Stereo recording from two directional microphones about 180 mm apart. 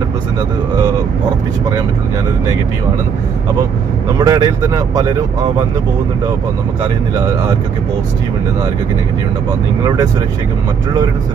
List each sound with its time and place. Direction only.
4.2 s speech: 20° right (ahead or behind)